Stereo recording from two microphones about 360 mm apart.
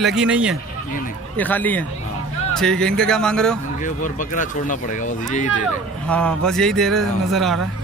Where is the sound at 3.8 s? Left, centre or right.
Left.